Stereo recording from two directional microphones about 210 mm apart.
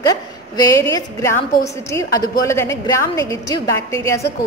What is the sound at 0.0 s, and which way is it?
A woman's voice, 15° left (ahead or behind).